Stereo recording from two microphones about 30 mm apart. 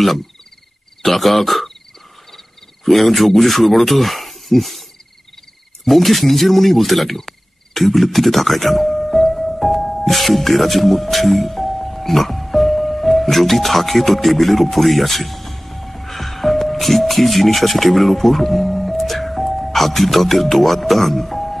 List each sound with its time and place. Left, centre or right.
1.0 s cricket: centre
2.3 s speech: centre
5.9 s cricket: centre